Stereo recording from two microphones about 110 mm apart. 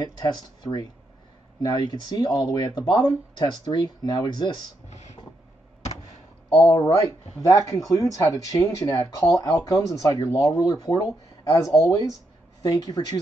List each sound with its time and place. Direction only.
0.2 s speech: 40° left (ahead or behind)
4.8 s a sound: 90° left
6.5 s speech: 25° left (ahead or behind)
10.6 s speech: 40° left (ahead or behind)